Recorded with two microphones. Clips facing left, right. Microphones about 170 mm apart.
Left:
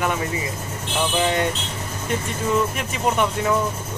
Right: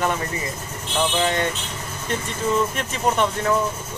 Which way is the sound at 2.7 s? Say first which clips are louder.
Even; 10° left (ahead or behind).